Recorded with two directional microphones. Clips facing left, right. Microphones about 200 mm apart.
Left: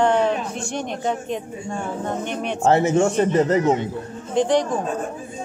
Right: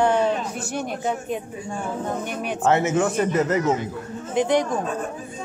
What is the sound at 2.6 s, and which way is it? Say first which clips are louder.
A man's voice: left 3 dB; 30° left (ahead or behind).